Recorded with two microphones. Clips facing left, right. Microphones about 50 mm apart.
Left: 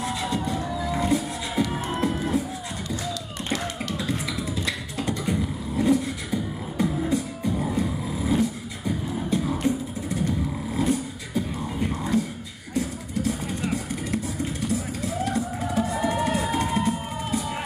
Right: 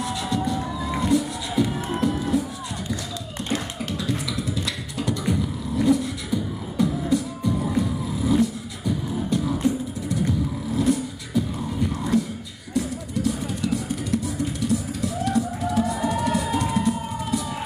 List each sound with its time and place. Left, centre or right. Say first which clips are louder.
0.0 s music: right 1 dB; left
3.9 s beatboxing: right 3 dB; left
10.8 s music: right 2 dB; left
12.7 s vehicle: right 2 dB; left